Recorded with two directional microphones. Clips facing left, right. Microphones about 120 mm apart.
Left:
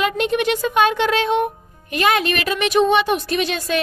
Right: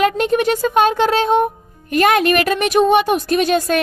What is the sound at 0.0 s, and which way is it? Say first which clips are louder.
Music: right 4 dB; 40° right (ahead or behind).